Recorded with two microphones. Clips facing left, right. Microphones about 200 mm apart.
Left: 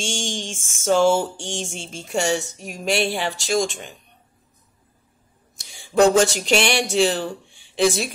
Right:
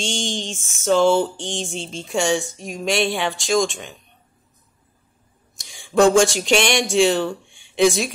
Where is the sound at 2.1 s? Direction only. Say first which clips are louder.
Right 1 dB; 40° left (ahead or behind).